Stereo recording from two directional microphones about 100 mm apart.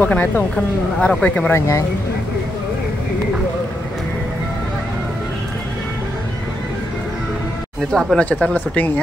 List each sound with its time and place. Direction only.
0.0 s speech: 15° left (ahead or behind)
1.5 s speech: 30° left (ahead or behind)
7.9 s speech: 5° left (ahead or behind)
8.3 s speech: 15° left (ahead or behind)